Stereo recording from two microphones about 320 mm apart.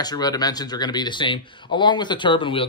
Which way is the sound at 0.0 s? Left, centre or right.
Centre.